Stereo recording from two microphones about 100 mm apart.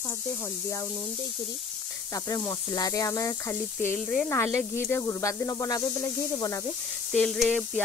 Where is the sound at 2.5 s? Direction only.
35° left (ahead or behind).